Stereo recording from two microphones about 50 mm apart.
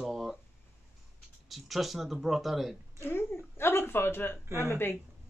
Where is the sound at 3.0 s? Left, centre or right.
Left.